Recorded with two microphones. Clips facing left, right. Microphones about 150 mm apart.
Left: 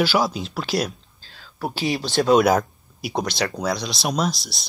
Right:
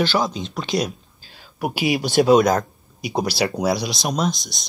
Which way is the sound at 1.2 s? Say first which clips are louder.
Right 3 dB; 15° right (ahead or behind).